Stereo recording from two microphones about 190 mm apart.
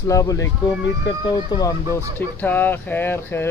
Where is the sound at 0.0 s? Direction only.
15° left (ahead or behind).